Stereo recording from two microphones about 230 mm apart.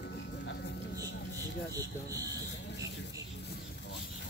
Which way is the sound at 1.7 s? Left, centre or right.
Centre.